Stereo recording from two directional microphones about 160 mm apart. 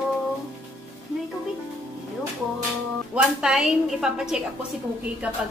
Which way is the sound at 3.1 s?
5° right (ahead or behind).